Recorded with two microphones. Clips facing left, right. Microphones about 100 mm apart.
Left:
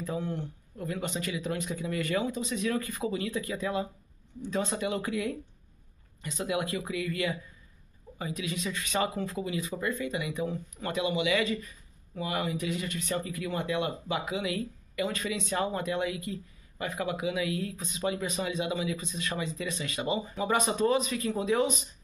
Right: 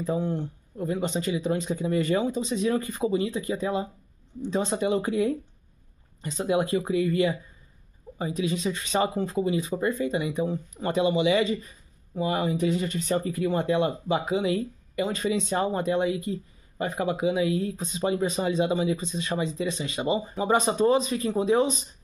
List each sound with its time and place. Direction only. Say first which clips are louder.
0.0 s speech: right 6 dB; 30° right (ahead or behind)